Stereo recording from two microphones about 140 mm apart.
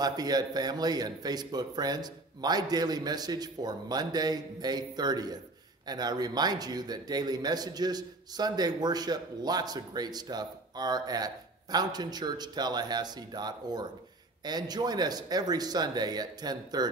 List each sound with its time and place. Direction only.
0.0 s a man's voice: 30° right (ahead or behind)